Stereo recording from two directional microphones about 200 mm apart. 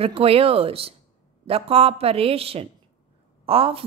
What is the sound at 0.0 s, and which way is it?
A woman's voice, 30° right (ahead or behind).